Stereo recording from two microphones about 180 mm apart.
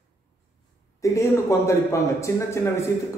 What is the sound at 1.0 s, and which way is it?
A man's voice, 15° left (ahead or behind).